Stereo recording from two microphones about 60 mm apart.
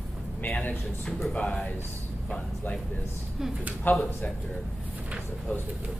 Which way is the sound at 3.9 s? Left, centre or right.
Left.